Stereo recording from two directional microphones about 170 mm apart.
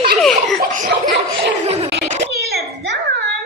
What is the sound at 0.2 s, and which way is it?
Laughter, centre (ahead or behind).